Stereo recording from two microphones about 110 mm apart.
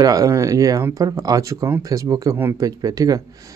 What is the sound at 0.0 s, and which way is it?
Speech, 35° right (ahead or behind).